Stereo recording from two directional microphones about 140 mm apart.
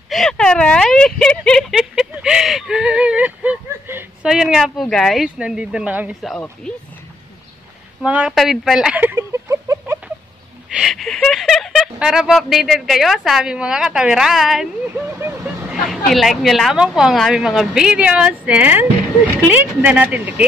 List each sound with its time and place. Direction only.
0.1 s a sound: 5° left (ahead or behind); by 4.3 s 15° right (ahead or behind)
4.3 s a woman's voice: 5° right (ahead or behind)
8.0 s speech: 10° right (ahead or behind)
8.4 s a sound: centre (ahead or behind); by 9.9 s 20° right (ahead or behind)
10.7 s speech: centre (ahead or behind)
15.0 s vehicle: 15° right (ahead or behind)
15.7 s a woman's voice: centre (ahead or behind)